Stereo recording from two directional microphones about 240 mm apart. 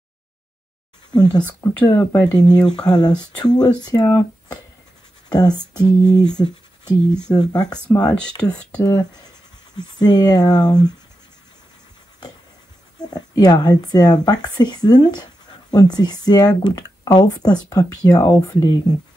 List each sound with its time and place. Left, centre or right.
1.1 s speech: centre
7.7 s speech: centre
8.9 s speech: centre
13.0 s speech: centre